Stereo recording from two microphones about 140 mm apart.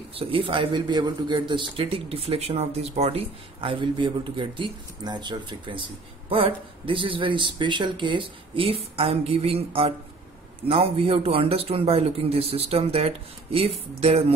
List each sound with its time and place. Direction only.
0.1 s speech: 40° right (ahead or behind)